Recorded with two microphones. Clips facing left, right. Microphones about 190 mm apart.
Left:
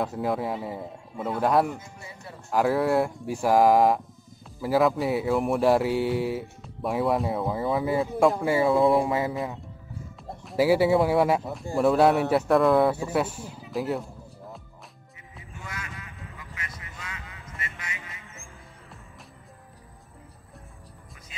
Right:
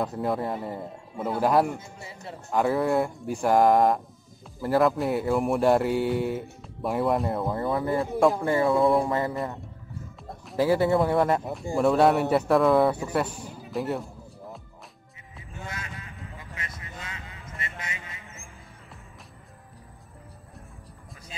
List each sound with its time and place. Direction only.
0.0 s speech: centre (ahead or behind)
1.8 s speech: 25° right (ahead or behind)
2.5 s speech: centre (ahead or behind)
15.6 s music: 30° right (ahead or behind)